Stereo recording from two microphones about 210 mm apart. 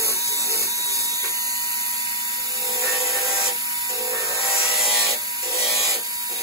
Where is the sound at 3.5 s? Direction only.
15° right (ahead or behind).